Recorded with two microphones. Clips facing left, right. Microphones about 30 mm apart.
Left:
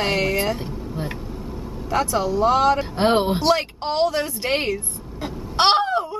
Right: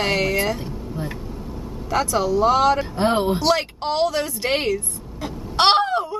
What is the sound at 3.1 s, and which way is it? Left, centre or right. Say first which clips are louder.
Speech: left 1 dB; centre.